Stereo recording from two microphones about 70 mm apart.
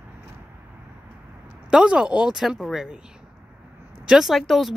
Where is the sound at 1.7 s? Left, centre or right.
Centre.